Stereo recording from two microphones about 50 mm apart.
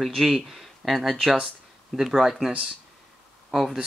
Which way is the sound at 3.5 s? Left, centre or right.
Centre.